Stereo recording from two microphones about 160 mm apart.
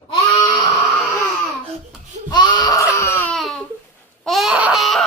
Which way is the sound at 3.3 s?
Centre (ahead or behind).